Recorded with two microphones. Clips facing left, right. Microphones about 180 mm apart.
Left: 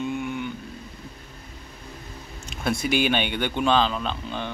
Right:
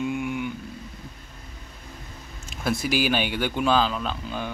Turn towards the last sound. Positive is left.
turn(degrees=-5)  # may be behind; listen again after turning